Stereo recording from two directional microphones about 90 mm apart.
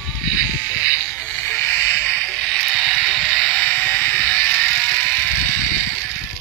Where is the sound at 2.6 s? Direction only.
Centre (ahead or behind); by 6.0 s 20° left (ahead or behind).